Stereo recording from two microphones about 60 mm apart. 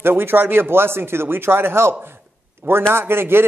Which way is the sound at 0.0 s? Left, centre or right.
Right.